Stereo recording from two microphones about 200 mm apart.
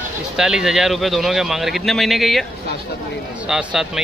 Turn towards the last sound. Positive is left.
turn(degrees=-5)  # may be behind; listen again after turning